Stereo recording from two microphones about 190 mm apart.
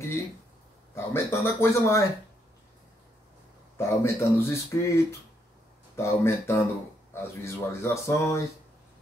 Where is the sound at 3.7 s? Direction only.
15° left (ahead or behind).